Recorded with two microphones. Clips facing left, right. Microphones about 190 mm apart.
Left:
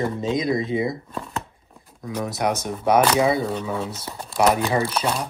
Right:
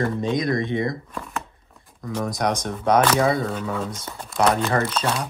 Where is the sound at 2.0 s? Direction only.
5° left (ahead or behind).